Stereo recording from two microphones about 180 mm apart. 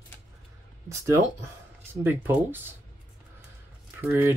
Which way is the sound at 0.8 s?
15° right (ahead or behind).